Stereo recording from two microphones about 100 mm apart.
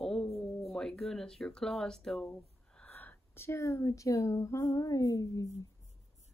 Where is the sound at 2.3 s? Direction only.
15° left (ahead or behind); by 5.5 s 35° left (ahead or behind).